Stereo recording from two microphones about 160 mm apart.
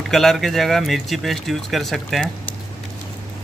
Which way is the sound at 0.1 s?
Centre (ahead or behind).